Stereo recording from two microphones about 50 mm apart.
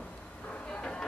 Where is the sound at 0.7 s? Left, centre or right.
Centre.